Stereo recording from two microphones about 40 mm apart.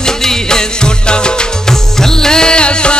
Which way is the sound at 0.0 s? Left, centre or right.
Centre.